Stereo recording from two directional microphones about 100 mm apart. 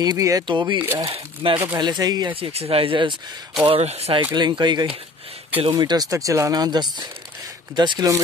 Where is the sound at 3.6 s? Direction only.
85° right.